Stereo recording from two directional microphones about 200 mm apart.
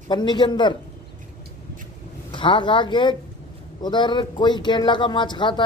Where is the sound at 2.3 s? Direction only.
25° left (ahead or behind).